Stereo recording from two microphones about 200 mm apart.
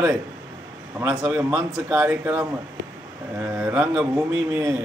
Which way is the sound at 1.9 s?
5° right (ahead or behind).